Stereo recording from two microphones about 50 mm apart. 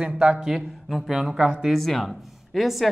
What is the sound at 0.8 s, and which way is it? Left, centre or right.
Speech, centre.